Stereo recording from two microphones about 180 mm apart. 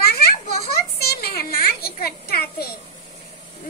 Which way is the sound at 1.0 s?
60° left (ahead or behind).